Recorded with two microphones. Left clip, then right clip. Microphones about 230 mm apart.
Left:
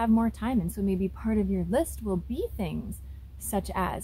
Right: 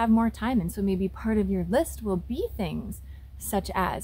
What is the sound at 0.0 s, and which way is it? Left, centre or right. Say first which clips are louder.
A woman's voice: right 2 dB; centre.